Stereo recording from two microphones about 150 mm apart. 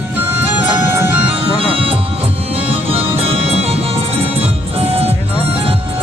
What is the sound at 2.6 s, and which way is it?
Music, 40° right (ahead or behind).